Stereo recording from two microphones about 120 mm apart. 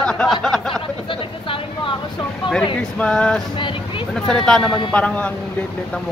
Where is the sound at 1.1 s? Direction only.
45° left (ahead or behind).